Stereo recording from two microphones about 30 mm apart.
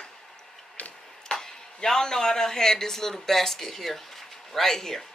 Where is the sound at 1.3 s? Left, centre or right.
Left.